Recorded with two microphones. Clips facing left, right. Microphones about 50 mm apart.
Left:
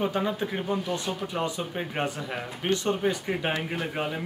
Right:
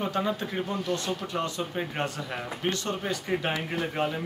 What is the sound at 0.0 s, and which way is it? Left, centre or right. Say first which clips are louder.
Speech: left 1 dB; centre.